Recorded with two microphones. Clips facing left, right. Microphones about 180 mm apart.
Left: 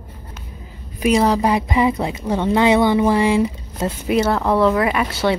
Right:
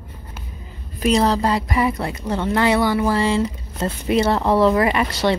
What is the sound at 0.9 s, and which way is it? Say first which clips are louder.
Speech: left 1 dB; 10° left (ahead or behind).